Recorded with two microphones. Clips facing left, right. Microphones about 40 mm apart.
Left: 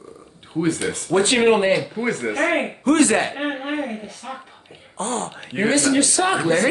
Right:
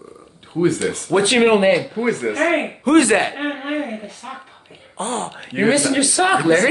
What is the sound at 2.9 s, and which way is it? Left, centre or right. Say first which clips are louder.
Speech: right 3 dB; right.